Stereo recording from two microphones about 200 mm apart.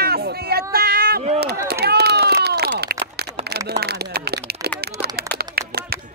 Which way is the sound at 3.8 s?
50° right (ahead or behind).